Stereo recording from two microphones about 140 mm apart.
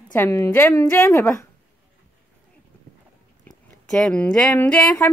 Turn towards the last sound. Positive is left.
turn(degrees=15)  # may be behind; listen again after turning